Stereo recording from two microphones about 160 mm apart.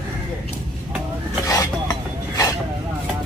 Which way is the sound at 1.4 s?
20° left (ahead or behind).